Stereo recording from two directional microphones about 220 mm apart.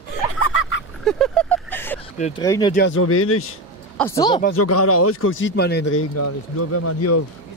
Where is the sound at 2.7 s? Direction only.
60° left (ahead or behind); by 3.4 s 80° left.